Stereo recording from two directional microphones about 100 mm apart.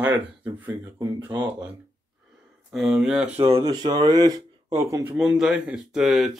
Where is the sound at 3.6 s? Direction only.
45° right (ahead or behind).